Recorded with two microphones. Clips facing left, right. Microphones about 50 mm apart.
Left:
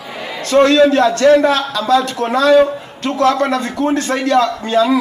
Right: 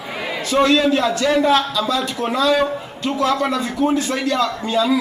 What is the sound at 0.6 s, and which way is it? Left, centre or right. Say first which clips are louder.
A man's voice: left 5 dB; left.